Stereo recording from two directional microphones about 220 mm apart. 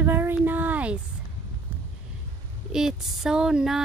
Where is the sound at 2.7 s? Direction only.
Centre (ahead or behind).